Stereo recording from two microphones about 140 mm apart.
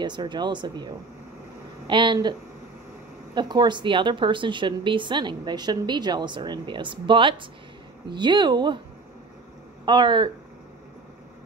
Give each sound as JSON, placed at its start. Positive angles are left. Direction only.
{"t": 0.0, "sound": "a woman's voice", "side_deg": -30}
{"t": 3.3, "sound": "a woman's voice", "side_deg": -30}
{"t": 9.8, "sound": "a woman's voice", "side_deg": -35}